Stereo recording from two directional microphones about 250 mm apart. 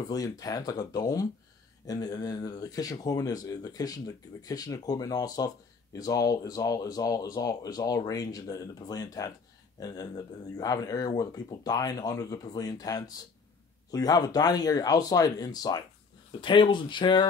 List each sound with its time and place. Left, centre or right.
0.1 s speech: centre